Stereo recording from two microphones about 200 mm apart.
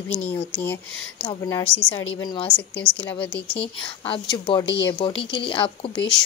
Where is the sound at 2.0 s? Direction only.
25° left (ahead or behind).